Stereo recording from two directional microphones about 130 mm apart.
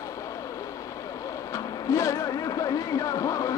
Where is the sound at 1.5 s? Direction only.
25° left (ahead or behind).